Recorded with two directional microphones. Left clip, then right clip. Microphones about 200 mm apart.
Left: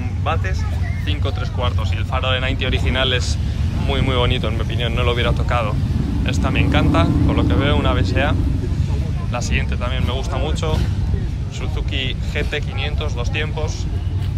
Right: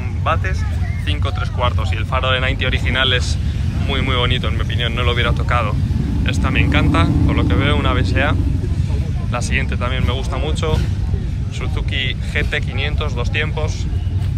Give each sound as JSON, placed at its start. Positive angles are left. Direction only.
{"t": 1.0, "sound": "speech", "side_deg": 5}
{"t": 11.9, "sound": "speech", "side_deg": 15}